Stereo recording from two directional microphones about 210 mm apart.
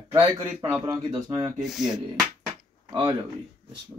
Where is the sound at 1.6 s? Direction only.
Centre (ahead or behind).